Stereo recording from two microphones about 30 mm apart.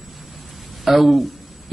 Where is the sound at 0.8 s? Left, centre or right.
Centre.